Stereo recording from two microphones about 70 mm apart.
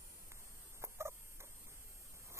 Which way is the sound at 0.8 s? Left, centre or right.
Right.